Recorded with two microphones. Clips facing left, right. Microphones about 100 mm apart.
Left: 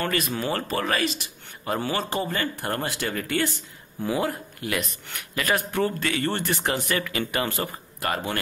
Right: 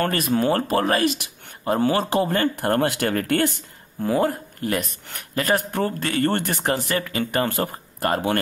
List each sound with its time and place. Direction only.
0.0 s a man's voice: 45° right (ahead or behind)
2.0 s speech: 55° right (ahead or behind)
4.1 s speech: 45° right (ahead or behind)